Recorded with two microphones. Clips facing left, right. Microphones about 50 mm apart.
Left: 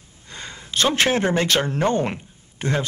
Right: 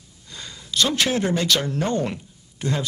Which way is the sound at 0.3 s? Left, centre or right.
Left.